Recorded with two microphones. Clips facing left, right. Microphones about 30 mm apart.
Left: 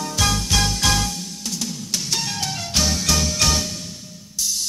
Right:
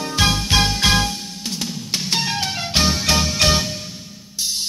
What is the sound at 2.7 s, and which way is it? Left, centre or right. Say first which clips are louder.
Music: right 3 dB; right.